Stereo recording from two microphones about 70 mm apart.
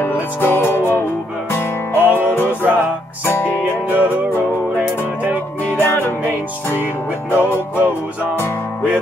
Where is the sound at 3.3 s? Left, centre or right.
Left.